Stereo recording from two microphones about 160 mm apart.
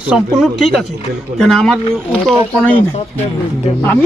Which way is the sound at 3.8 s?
10° left (ahead or behind).